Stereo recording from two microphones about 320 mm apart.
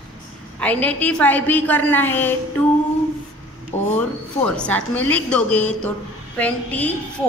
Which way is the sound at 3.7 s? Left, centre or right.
Left.